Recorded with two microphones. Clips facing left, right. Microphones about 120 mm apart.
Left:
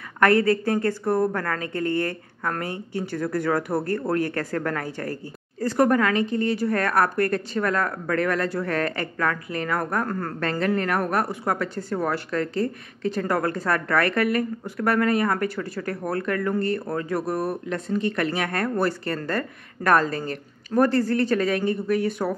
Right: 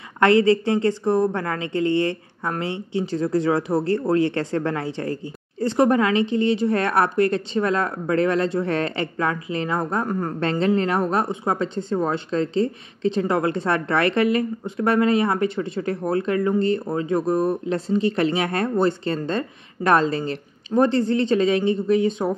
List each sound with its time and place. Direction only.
0.4 s speech: 20° right (ahead or behind)
2.9 s speech: 20° right (ahead or behind)
20.1 s a woman's voice: 45° left (ahead or behind)
20.7 s speech: 25° right (ahead or behind)